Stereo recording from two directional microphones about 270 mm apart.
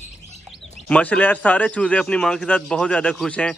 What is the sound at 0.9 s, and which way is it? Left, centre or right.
A man's voice, centre.